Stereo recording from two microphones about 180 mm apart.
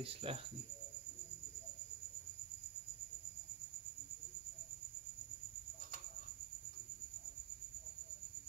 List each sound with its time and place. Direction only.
0.0 s speech: 30° right (ahead or behind)